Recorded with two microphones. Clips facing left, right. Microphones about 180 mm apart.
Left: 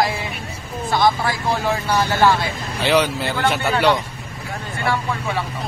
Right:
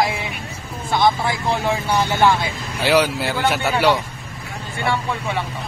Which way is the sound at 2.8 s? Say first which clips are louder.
Right 1 dB; 10° right (ahead or behind).